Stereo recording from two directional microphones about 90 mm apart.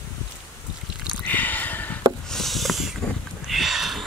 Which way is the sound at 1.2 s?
20° left (ahead or behind).